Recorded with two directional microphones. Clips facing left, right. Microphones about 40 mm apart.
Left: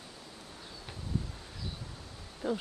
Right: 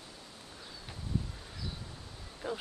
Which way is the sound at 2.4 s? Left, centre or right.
Centre.